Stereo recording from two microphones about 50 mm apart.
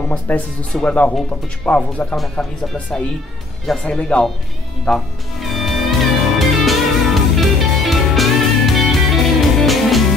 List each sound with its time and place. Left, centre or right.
0.1 s speech: left
3.7 s speech: centre
5.4 s music: centre